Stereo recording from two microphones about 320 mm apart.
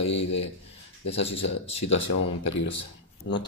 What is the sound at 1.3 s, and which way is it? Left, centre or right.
Speech, centre.